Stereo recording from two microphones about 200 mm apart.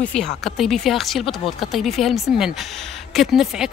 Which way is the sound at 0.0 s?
5° left (ahead or behind).